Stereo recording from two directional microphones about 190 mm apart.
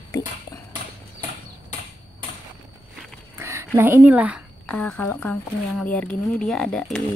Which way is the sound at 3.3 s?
15° right (ahead or behind).